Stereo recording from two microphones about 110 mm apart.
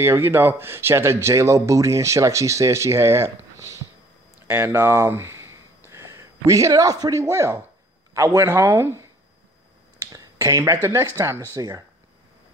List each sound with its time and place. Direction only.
0.0 s speech: 20° right (ahead or behind)
10.1 s speech: 30° right (ahead or behind)